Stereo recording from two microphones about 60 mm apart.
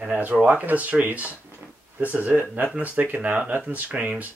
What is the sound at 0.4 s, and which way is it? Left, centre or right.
Speech, right.